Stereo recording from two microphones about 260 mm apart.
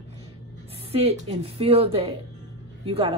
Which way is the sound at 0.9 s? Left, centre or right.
Right.